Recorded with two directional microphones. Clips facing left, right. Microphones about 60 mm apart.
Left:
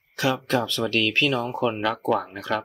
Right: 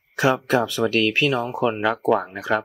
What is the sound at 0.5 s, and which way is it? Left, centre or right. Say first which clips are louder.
Speech: right 4 dB; centre.